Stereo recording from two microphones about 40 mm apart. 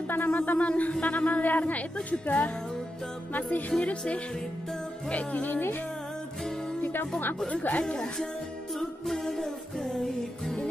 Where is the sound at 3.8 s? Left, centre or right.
Left.